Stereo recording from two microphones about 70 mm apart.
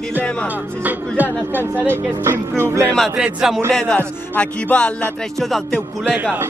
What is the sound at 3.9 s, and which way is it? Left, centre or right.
Speech, left.